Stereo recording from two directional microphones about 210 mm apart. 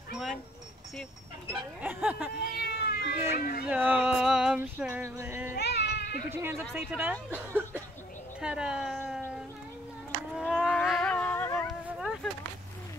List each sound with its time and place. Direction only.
1.5 s speech: 5° right (ahead or behind)
2.6 s cat: 45° left (ahead or behind)
3.6 s music: 5° right (ahead or behind)
5.6 s goat: 55° left (ahead or behind)
6.7 s speech: 5° right (ahead or behind)
8.4 s a sound: 5° right (ahead or behind)
11.8 s a sound: 5° right (ahead or behind)